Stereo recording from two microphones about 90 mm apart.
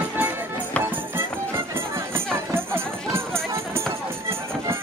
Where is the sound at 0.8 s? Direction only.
25° right (ahead or behind).